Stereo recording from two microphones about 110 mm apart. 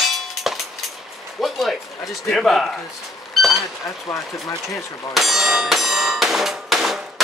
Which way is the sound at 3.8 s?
30° left (ahead or behind).